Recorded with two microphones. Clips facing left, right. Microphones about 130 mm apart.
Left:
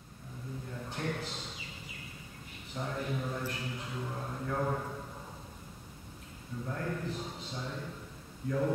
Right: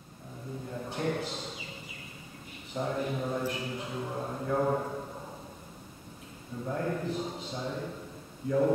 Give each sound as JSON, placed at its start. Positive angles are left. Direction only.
{"t": 0.8, "sound": "a sound", "side_deg": -10}
{"t": 2.7, "sound": "a man's voice", "side_deg": -15}
{"t": 6.6, "sound": "a man's voice", "side_deg": -15}